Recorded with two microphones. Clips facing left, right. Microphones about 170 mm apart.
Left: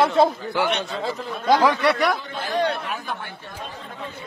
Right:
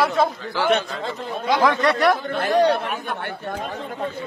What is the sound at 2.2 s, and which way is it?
Speech, 65° right (ahead or behind).